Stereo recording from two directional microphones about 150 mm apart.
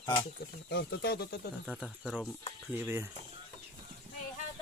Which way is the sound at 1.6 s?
5° right (ahead or behind).